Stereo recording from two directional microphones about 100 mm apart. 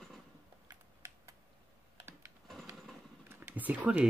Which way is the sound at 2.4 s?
Centre (ahead or behind).